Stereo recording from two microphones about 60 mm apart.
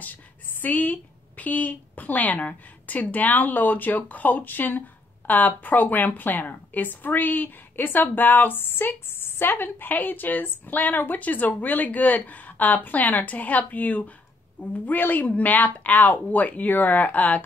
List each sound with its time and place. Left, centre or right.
0.0 s a woman's voice: left